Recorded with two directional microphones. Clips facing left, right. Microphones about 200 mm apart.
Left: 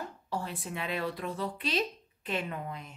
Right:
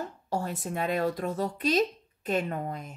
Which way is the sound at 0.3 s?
45° right (ahead or behind).